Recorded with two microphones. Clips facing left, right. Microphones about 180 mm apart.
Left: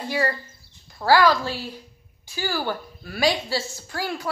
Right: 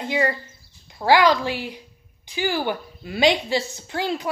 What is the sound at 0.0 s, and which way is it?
A woman's voice, 20° right (ahead or behind).